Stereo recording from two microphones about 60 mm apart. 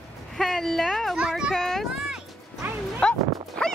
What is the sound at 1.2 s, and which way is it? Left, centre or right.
Speech, centre.